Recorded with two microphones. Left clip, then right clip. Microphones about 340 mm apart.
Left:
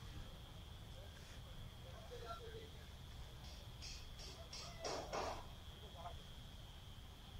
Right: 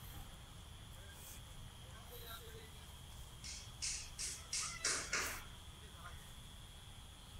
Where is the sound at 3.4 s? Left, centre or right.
Left.